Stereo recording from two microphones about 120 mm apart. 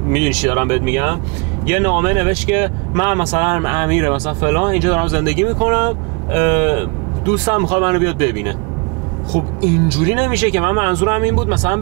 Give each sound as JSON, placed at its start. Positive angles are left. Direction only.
{"t": 0.1, "sound": "speech", "side_deg": -15}